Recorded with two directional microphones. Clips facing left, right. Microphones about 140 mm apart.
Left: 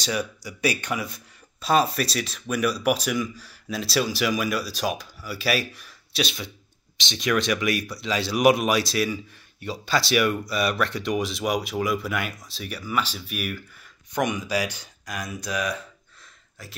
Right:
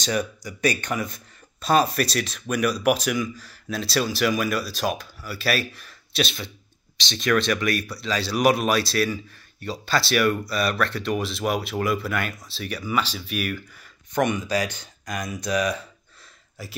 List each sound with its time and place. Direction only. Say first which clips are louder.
0.0 s speech: right 2 dB; 5° left (ahead or behind)
16.6 s speech: right 5 dB; 10° right (ahead or behind)